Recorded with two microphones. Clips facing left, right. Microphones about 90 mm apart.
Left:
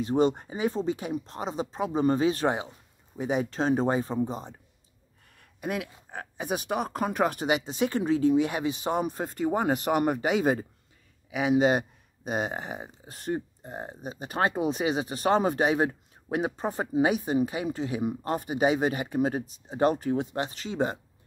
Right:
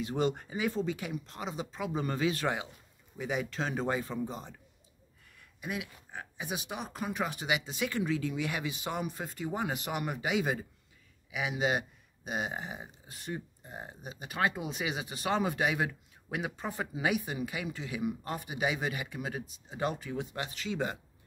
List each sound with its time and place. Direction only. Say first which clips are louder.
0.0 s speech: left 7 dB; 30° left (ahead or behind)
5.4 s speech: left 6 dB; 50° left (ahead or behind); by 21.0 s 30° left (ahead or behind)